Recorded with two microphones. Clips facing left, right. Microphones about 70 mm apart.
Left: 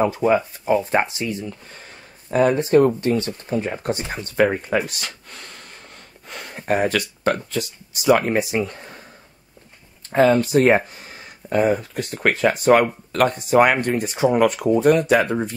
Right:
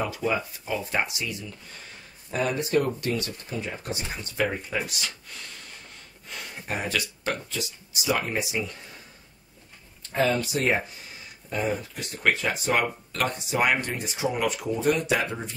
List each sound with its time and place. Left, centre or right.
0.0 s speech: left
10.1 s speech: left
11.4 s speech: left